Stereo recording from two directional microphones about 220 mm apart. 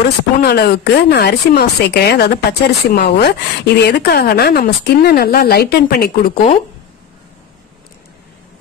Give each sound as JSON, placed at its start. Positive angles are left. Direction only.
{"t": 0.0, "sound": "speech", "side_deg": 45}